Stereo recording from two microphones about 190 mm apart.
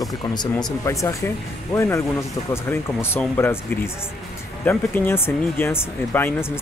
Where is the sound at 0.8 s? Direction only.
15° left (ahead or behind).